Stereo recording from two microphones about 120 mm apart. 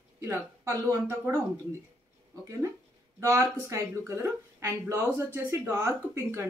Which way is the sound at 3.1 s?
25° right (ahead or behind).